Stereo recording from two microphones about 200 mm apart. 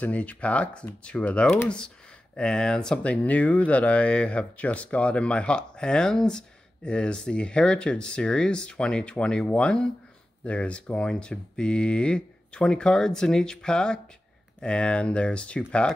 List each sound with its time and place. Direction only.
0.0 s speech: 5° left (ahead or behind)